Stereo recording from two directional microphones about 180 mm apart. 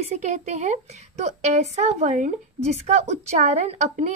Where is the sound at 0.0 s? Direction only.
40° right (ahead or behind).